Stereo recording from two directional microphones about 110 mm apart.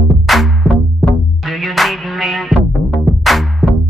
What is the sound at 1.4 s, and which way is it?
Music, centre (ahead or behind).